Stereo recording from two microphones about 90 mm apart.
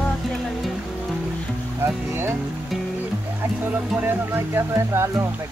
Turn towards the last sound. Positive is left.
turn(degrees=-30)  # may be behind; listen again after turning